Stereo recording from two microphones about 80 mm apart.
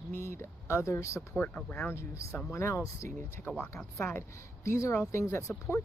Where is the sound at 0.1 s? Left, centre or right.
Left.